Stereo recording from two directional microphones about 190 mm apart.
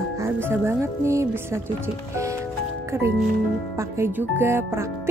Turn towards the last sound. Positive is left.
turn(degrees=-10)  # may be behind; listen again after turning